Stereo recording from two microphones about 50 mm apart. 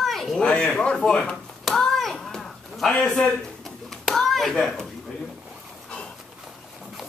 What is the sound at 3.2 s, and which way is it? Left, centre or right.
Clapping, centre.